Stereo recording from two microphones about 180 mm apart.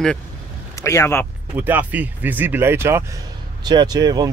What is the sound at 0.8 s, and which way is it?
Speech, 15° left (ahead or behind).